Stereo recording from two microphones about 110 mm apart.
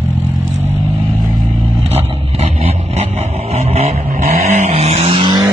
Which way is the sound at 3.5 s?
70° right (ahead or behind).